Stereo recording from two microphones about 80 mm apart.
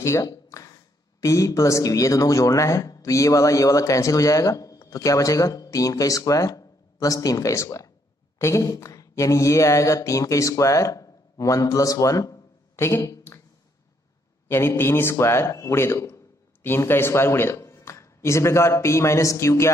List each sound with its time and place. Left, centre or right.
0.0 s speech: left
0.5 s a sound: left
1.2 s speech: left
12.7 s speech: left
14.5 s speech: left